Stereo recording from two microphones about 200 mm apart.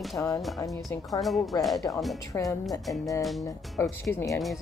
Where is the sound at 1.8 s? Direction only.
15° left (ahead or behind).